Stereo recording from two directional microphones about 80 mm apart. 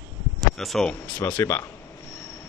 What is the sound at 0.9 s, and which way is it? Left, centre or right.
Speech, centre.